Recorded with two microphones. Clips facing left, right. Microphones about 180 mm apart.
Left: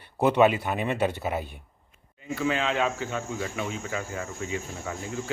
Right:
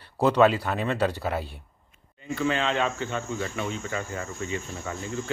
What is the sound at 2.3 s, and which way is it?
Speech, 5° left (ahead or behind).